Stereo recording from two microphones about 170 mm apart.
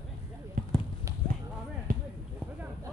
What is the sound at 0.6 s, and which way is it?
Basketball bounce, 55° right (ahead or behind).